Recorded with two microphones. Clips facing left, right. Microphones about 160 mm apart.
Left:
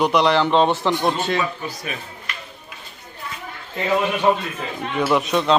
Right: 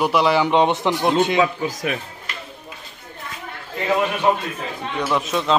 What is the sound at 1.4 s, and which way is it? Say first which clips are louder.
Speech: right 6 dB; 90° right.